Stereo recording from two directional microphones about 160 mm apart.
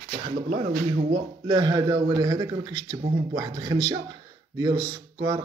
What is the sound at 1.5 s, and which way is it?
Speech, 25° right (ahead or behind).